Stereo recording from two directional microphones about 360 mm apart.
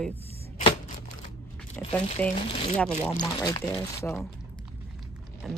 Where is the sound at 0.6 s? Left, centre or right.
Centre.